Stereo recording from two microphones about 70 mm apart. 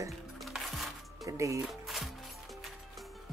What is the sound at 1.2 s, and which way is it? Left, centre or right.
Speech, right.